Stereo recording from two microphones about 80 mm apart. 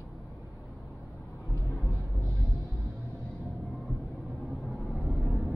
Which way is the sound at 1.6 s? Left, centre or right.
Left.